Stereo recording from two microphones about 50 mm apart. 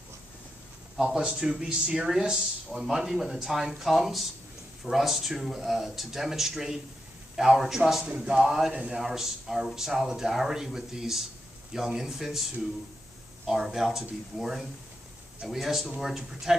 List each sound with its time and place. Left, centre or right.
1.0 s speech: right; by 12.4 s centre
13.5 s speech: centre